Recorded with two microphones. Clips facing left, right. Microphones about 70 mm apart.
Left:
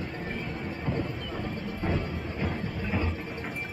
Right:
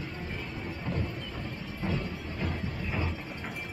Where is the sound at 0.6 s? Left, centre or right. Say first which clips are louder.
Left 2 dB; centre.